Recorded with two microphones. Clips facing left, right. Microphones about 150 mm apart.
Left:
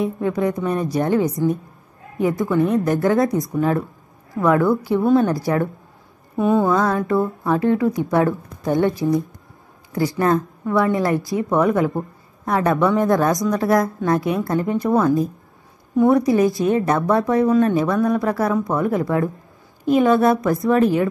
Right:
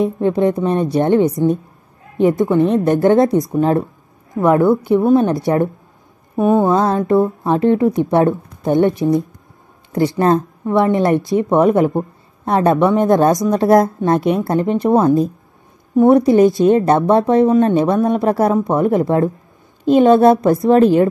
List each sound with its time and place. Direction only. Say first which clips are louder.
0.0 s speech: right 5 dB; 25° right (ahead or behind)